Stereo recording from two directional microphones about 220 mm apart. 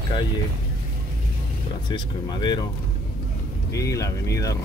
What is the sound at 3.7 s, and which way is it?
Speech, 15° left (ahead or behind).